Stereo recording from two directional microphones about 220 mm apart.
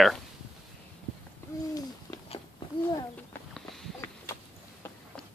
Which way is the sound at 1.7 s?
20° left (ahead or behind).